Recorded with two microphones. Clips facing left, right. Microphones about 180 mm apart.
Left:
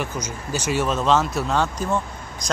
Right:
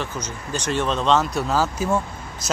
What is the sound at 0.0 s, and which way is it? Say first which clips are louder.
Speech: left 1 dB; 10° left (ahead or behind).